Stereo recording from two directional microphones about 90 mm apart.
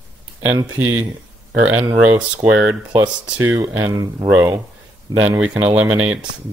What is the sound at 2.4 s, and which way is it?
Speech, 10° right (ahead or behind).